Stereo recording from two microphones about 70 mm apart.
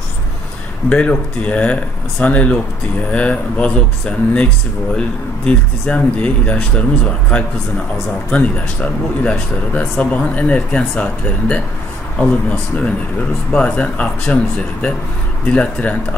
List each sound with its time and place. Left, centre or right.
0.8 s speech: centre
4.9 s speech: centre